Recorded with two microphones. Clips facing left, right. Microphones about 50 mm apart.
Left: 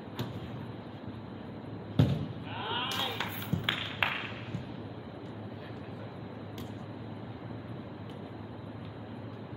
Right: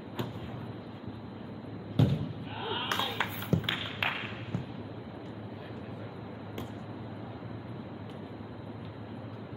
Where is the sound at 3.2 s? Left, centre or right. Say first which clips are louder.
Right 4 dB; right.